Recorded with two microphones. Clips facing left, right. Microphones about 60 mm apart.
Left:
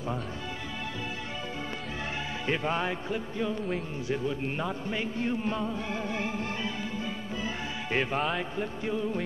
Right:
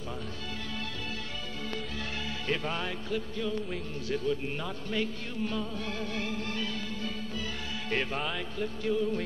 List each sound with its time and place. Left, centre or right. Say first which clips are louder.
2.4 s speech: left 4 dB; left
7.9 s music: left 4 dB; centre
8.5 s speech: right 1 dB; left